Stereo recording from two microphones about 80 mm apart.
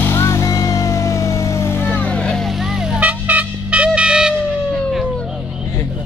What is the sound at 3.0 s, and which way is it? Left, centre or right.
Music, centre.